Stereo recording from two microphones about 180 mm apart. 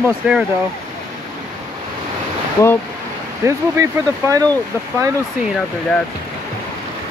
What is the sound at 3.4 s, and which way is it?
Speech, 20° right (ahead or behind).